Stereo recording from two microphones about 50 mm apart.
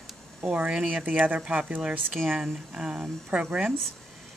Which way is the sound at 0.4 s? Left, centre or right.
Right.